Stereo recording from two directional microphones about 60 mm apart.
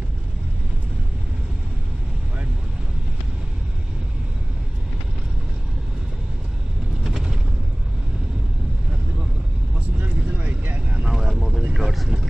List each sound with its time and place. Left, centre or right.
7.1 s a sound: centre
9.9 s vehicle: right
11.1 s vehicle: centre